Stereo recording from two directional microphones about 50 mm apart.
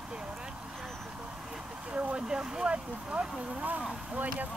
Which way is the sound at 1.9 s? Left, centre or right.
Right.